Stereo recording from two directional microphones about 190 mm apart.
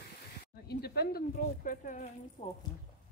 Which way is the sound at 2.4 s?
30° left (ahead or behind).